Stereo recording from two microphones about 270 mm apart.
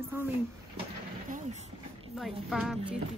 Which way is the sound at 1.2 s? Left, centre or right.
Right.